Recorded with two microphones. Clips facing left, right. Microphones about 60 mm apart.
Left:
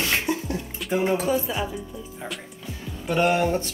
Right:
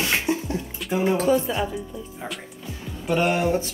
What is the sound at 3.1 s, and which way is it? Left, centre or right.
Speech, centre.